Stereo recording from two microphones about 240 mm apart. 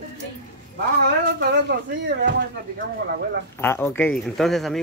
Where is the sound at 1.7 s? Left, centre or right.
Right.